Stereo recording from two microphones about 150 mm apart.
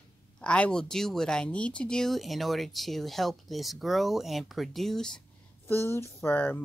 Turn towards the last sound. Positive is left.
turn(degrees=15)  # may be behind; listen again after turning